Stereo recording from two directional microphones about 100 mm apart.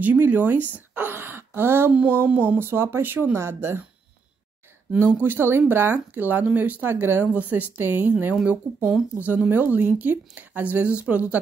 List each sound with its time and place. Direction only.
0.0 s speech: 15° right (ahead or behind)
5.2 s speech: 20° right (ahead or behind)